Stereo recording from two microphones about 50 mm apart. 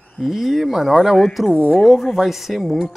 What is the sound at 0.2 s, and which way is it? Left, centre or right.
Speech, centre.